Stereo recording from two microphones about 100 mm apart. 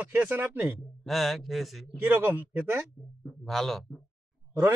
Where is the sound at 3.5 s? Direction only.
Centre (ahead or behind).